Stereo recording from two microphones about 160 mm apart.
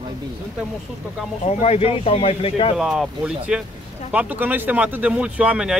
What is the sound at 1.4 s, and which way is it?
Speech, 40° left (ahead or behind).